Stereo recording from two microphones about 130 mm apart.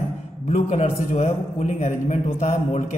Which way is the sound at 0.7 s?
55° left (ahead or behind).